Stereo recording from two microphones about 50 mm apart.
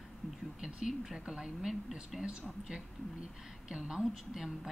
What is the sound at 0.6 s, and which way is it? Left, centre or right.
A woman's voice, centre.